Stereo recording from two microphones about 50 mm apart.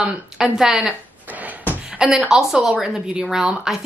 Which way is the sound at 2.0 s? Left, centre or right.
Centre.